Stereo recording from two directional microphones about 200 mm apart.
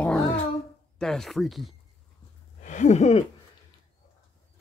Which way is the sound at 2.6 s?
35° left (ahead or behind).